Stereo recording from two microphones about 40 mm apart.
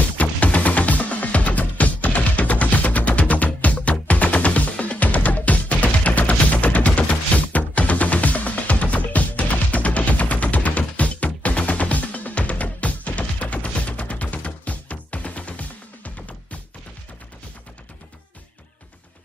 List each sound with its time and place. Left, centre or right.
0.2 s music: left